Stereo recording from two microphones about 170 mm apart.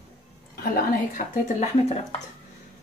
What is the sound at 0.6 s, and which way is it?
Speech, 55° left (ahead or behind).